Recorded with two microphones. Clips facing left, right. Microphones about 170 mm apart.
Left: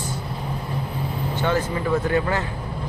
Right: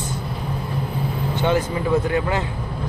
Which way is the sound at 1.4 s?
20° right (ahead or behind).